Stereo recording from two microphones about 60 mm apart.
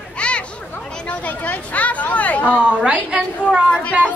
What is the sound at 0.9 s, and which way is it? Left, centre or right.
Speech, left.